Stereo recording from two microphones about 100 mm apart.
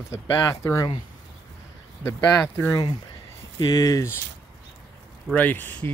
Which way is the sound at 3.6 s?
35° left (ahead or behind).